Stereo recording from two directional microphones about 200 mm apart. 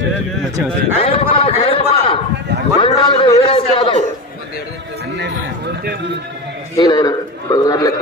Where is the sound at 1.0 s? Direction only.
25° left (ahead or behind).